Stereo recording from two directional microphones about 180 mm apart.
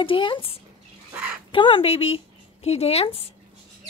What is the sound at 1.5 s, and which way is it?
Speech, 30° left (ahead or behind).